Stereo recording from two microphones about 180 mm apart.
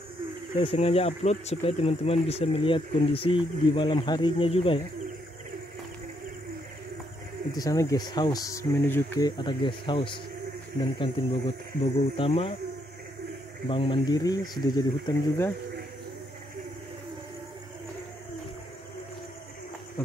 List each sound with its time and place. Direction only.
0.6 s speech: 35° left (ahead or behind)
7.5 s speech: 20° left (ahead or behind)
9.4 s speech: 25° left (ahead or behind)
13.7 s speech: 30° left (ahead or behind)